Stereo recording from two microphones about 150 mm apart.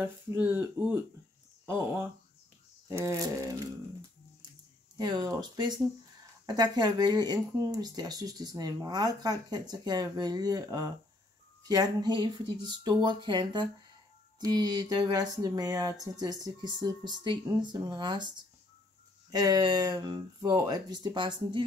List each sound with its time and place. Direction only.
0.5 s speech: 15° right (ahead or behind)
2.9 s speech: 20° right (ahead or behind)
4.9 s speech: 30° right (ahead or behind)
19.3 s speech: 25° right (ahead or behind)